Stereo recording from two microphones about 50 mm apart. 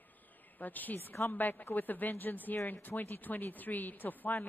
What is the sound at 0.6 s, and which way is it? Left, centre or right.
Speech, left.